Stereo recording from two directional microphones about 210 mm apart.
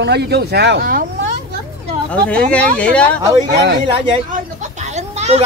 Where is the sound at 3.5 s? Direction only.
55° right (ahead or behind).